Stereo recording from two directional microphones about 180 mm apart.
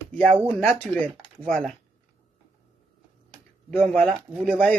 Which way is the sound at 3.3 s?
5° left (ahead or behind).